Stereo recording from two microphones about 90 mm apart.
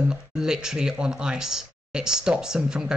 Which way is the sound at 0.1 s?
5° right (ahead or behind).